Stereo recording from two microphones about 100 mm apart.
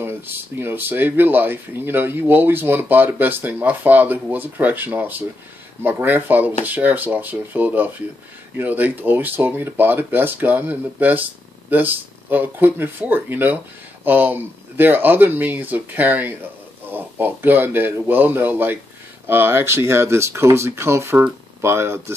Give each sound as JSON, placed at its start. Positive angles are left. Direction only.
{"t": 0.0, "sound": "speech", "side_deg": -20}